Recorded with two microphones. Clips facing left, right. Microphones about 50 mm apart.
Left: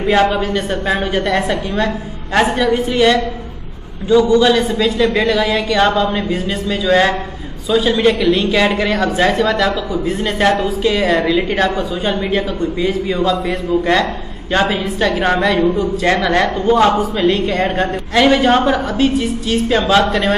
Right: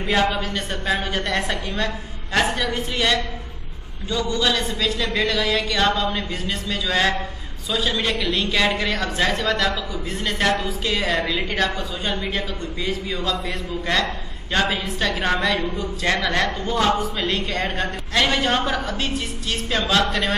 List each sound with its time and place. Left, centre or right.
0.0 s a woman's voice: centre